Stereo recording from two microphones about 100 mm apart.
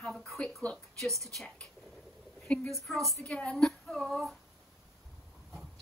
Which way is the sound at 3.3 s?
10° left (ahead or behind).